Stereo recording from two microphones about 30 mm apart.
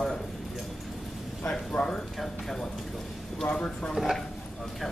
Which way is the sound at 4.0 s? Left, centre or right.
Right.